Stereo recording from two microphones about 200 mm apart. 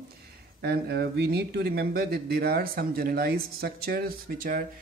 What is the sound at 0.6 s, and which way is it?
Speech, 55° right (ahead or behind).